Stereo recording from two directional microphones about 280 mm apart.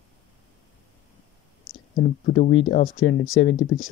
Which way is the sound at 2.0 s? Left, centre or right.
Left.